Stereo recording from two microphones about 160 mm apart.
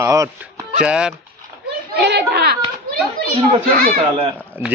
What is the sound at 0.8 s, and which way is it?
Speech, 5° right (ahead or behind).